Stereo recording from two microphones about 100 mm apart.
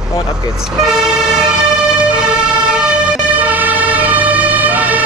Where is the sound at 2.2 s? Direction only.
10° right (ahead or behind).